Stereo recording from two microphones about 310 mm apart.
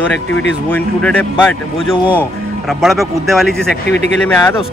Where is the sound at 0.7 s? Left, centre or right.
Centre.